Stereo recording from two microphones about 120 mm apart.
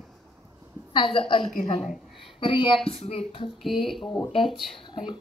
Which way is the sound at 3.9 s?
Centre (ahead or behind).